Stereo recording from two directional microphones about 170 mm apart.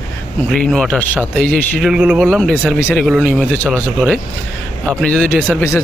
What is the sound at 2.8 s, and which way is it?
Speech, 15° left (ahead or behind).